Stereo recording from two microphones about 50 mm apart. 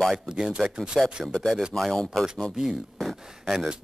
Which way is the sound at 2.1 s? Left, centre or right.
Centre.